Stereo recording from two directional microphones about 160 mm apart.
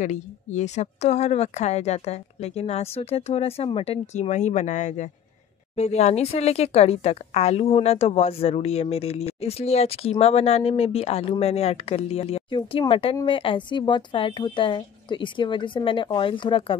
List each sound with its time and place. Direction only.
0.0 s a woman's voice: 45° left (ahead or behind); by 16.7 s 30° left (ahead or behind)